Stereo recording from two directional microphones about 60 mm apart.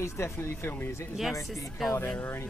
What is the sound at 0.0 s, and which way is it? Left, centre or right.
Speech, left.